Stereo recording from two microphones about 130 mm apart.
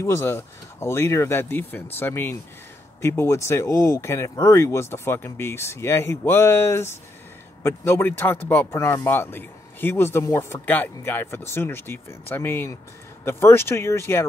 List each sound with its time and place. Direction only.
0.0 s speech: 20° left (ahead or behind)